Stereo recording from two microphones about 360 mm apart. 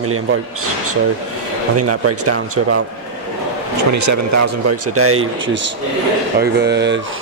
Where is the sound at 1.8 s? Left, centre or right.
Right.